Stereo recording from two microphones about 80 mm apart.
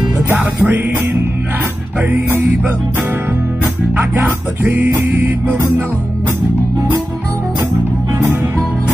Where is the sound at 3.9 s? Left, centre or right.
Right.